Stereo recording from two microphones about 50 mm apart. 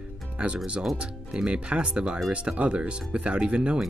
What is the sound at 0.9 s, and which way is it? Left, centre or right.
Speech, centre.